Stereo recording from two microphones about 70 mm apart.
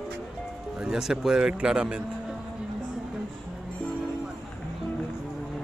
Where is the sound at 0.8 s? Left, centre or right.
Centre.